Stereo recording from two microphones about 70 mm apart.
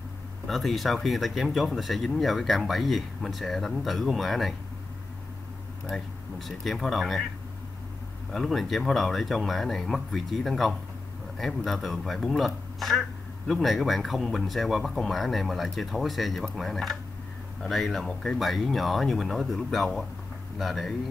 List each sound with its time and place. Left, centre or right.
0.5 s speech: centre
5.9 s speech: centre
8.3 s speech: centre